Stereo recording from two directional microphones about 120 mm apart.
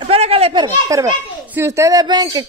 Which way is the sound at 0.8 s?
25° right (ahead or behind).